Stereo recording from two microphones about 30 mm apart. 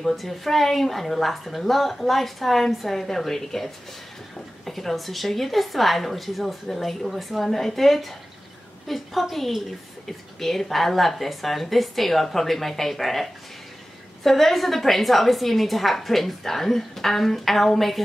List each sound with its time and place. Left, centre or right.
0.1 s a woman's voice: centre